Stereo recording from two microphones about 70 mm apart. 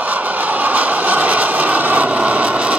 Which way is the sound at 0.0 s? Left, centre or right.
Right.